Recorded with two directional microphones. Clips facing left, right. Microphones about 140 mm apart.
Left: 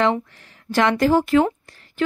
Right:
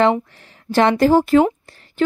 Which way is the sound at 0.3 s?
30° right (ahead or behind).